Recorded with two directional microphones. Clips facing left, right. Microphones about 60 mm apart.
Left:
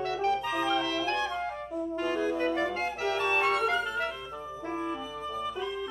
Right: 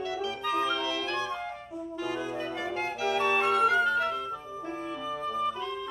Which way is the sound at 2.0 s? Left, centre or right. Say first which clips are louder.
Left 4 dB; left.